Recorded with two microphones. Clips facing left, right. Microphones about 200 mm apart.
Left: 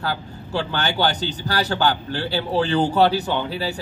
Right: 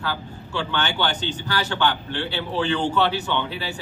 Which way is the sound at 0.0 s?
40° left (ahead or behind).